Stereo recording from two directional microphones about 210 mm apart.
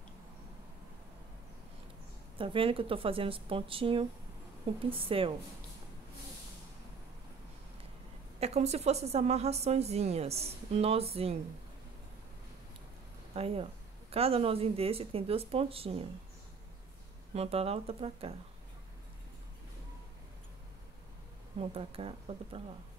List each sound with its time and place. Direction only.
2.3 s speech: 25° right (ahead or behind)
8.4 s a woman's voice: 30° right (ahead or behind)
13.3 s speech: 30° right (ahead or behind)
17.3 s speech: 30° right (ahead or behind)
21.5 s speech: 30° right (ahead or behind)